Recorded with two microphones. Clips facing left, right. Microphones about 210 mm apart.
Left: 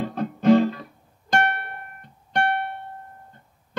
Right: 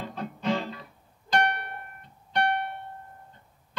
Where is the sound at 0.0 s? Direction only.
50° left (ahead or behind).